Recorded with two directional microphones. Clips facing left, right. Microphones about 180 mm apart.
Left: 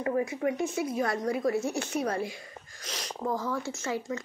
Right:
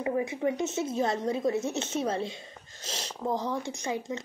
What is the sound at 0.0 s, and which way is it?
Speech, 20° right (ahead or behind).